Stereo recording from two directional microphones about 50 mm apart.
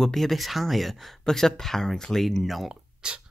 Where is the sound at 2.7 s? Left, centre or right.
Centre.